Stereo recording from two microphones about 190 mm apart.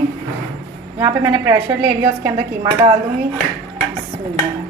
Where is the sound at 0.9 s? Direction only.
15° right (ahead or behind).